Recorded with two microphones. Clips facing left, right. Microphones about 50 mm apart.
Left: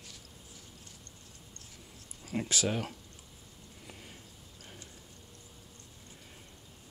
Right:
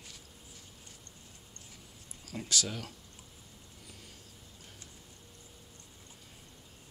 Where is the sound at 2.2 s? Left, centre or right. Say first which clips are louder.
Left 3 dB; left.